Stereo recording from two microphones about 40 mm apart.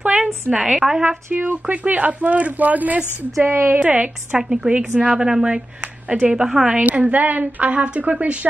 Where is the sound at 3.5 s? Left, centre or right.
Right.